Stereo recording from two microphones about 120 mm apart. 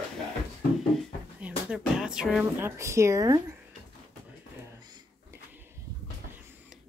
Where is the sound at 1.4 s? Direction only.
5° right (ahead or behind).